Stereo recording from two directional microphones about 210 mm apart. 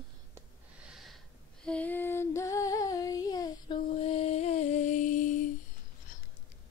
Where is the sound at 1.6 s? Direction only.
5° left (ahead or behind); by 5.2 s 35° left (ahead or behind).